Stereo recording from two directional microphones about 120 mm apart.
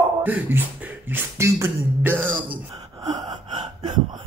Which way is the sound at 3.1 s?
35° right (ahead or behind).